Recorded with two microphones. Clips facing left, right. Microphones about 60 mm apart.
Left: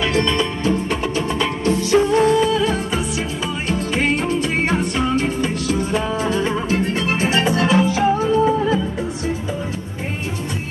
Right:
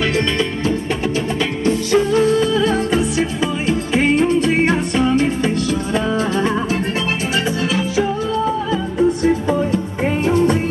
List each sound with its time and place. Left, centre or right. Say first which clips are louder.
1.9 s music: left 1 dB; left
2.5 s music: right 3 dB; centre
6.3 s music: right 2 dB; right
7.5 s music: left 3 dB; left